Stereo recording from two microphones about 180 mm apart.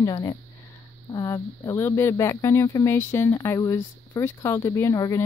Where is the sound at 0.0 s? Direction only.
20° left (ahead or behind).